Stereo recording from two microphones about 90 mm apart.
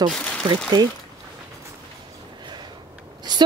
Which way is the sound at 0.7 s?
50° right (ahead or behind).